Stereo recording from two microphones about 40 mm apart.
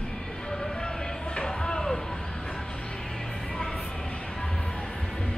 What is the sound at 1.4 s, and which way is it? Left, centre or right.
Music, centre.